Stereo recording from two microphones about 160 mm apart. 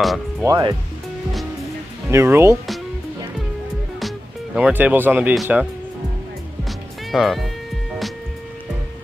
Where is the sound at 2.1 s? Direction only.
15° right (ahead or behind).